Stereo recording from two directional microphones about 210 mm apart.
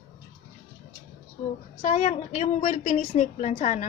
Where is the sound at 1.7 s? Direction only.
35° left (ahead or behind).